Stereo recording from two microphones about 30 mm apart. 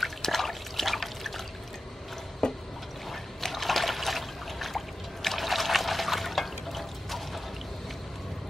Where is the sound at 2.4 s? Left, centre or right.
Left.